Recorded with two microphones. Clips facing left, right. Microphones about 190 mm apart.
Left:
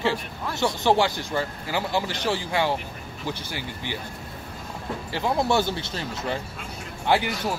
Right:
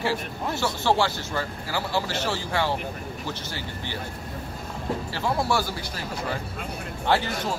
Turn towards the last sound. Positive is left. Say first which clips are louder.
# left 1 dB
turn(degrees=15)  # may be behind; listen again after turning